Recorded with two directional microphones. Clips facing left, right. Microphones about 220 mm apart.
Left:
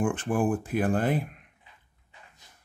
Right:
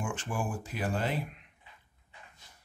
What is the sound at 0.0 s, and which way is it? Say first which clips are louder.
Speech: left 9 dB; 55° left (ahead or behind).